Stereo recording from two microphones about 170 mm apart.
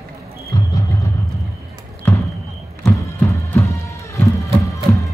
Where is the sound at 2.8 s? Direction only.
15° left (ahead or behind).